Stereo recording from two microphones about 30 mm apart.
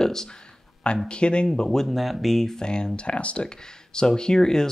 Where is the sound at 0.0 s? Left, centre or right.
Centre.